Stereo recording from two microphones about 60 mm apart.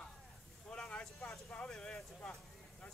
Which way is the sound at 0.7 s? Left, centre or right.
Centre.